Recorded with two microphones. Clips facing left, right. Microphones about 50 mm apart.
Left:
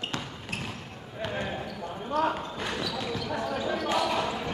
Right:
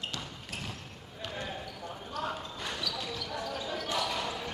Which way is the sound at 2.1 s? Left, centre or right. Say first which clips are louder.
Left 10 dB; left.